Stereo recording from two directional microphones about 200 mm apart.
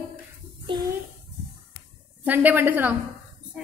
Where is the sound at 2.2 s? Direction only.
10° right (ahead or behind).